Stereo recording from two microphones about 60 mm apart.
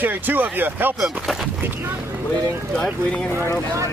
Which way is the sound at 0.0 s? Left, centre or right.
Right.